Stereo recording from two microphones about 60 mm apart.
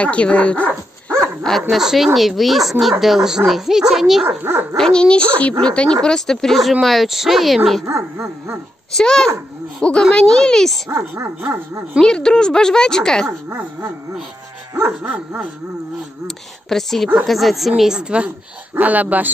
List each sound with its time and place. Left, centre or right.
0.0 s speech: centre
1.0 s dog: centre
1.7 s a child's voice: centre
4.4 s speech: right
4.7 s speech: centre
5.0 s a child's voice: centre
7.8 s speech: right
8.9 s speech: centre
10.9 s speech: right
12.0 s speech: centre
14.8 s dog: right
16.6 s a child's voice: centre
18.8 s dog: right